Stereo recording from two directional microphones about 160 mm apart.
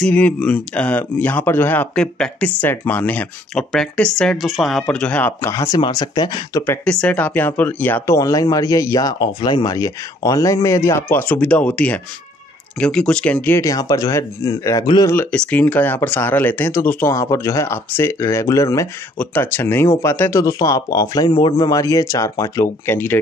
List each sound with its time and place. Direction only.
0.0 s speech: 10° left (ahead or behind); by 6.6 s 25° left (ahead or behind)
6.6 s speech: 10° left (ahead or behind)
15.1 s speech: 5° left (ahead or behind)